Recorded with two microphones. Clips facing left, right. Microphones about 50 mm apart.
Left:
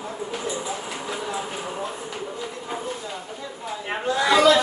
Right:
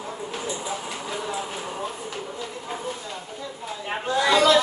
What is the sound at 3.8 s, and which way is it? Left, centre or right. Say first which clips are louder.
Chatter: even; centre.